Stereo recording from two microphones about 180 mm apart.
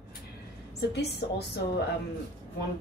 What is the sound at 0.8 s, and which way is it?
Speech, 65° left (ahead or behind).